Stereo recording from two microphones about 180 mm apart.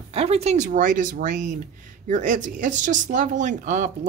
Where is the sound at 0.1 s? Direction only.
35° right (ahead or behind).